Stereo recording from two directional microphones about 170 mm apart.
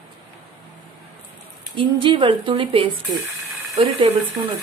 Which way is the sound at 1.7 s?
30° right (ahead or behind).